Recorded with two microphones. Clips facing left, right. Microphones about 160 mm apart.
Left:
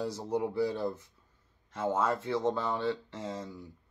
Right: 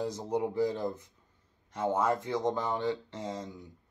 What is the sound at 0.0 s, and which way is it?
Speech, 20° right (ahead or behind).